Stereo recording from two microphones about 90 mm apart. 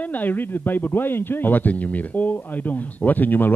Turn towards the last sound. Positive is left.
turn(degrees=20)  # may be behind; listen again after turning